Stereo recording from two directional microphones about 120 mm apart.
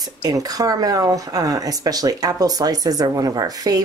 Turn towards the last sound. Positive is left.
turn(degrees=-30)  # may be behind; listen again after turning